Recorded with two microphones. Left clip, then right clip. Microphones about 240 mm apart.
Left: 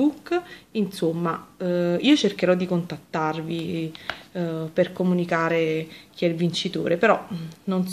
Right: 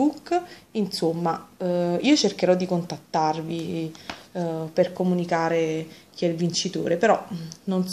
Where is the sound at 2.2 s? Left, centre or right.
Centre.